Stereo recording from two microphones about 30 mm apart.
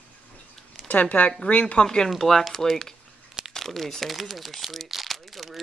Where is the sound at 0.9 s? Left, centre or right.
Left.